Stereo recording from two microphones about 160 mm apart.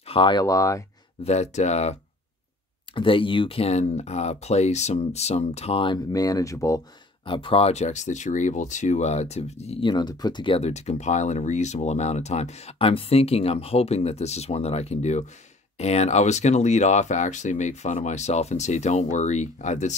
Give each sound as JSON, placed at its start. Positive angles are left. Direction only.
{"t": 0.0, "sound": "speech", "side_deg": 35}
{"t": 1.2, "sound": "speech", "side_deg": 45}
{"t": 2.9, "sound": "speech", "side_deg": 35}
{"t": 7.2, "sound": "speech", "side_deg": 30}
{"t": 9.8, "sound": "speech", "side_deg": 25}